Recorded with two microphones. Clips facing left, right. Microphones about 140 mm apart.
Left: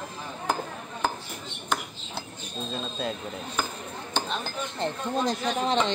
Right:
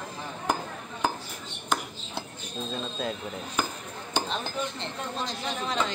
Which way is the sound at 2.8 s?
Centre (ahead or behind).